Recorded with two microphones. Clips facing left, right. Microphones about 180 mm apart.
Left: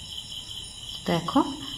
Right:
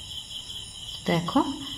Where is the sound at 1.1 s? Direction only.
Centre (ahead or behind).